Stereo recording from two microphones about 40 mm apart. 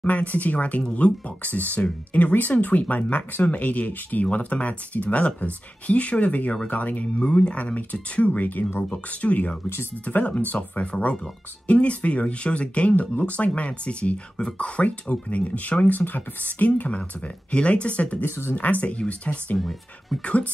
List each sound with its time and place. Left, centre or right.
0.0 s speech: left
10.8 s speech: left
18.2 s speech: left
18.6 s speech: left